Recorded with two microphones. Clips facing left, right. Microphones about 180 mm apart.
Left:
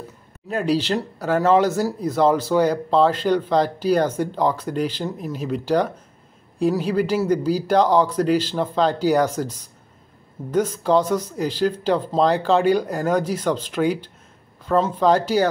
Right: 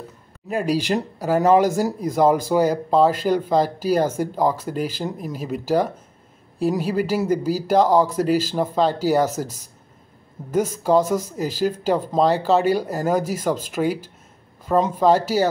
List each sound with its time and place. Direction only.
0.5 s speech: 10° right (ahead or behind)